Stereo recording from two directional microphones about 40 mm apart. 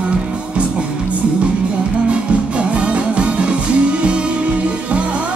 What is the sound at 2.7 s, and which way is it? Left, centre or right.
Music, right.